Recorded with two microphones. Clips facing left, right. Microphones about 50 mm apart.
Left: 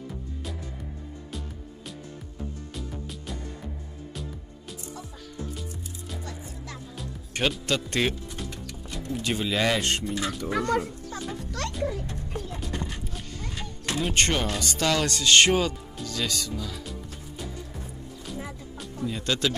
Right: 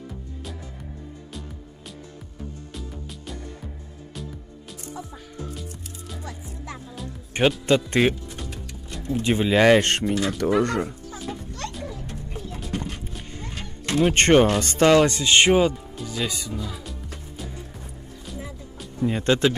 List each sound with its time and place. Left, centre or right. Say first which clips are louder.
2.7 s music: even; centre
6.2 s music: right 2 dB; centre
7.6 s speech: right 7 dB; right
8.4 s a sound: even; centre
9.2 s speech: right 8 dB; right
9.8 s speech: right 6 dB; right
11.6 s music: left 3 dB; left
12.7 s a sound: right 3 dB; right
14.1 s speech: right 10 dB; right; by 16.8 s centre
18.9 s speech: right 7 dB; right